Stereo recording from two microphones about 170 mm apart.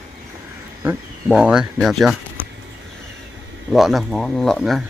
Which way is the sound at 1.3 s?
5° right (ahead or behind).